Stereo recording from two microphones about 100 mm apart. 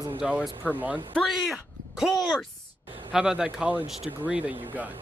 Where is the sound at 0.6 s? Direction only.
15° left (ahead or behind).